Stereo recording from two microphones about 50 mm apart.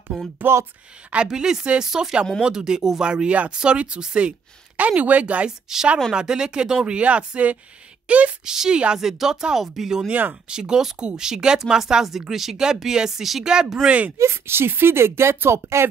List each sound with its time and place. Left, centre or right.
0.1 s speech: centre
1.1 s a woman's voice: centre
5.7 s a woman's voice: centre
7.0 s speech: right
8.5 s a woman's voice: centre
13.8 s speech: right
14.1 s speech: right